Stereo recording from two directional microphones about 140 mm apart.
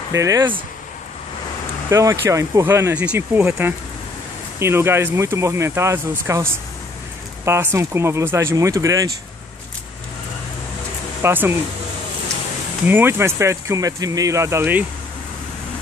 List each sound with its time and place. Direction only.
0.1 s speech: 25° right (ahead or behind)
1.9 s speech: 20° right (ahead or behind)
11.2 s speech: 15° right (ahead or behind)
12.8 s speech: 15° right (ahead or behind)